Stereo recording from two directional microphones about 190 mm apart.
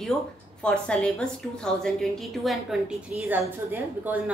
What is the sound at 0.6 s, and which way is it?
A woman's voice, 5° left (ahead or behind).